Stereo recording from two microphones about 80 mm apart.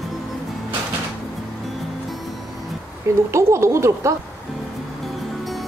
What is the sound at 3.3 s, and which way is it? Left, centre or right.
Speech, right.